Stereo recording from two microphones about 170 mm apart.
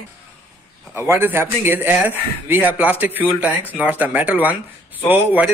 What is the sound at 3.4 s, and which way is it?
Speech, 10° left (ahead or behind).